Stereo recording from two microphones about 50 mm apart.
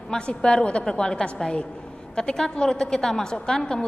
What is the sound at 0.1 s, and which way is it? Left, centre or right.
A woman's voice, centre.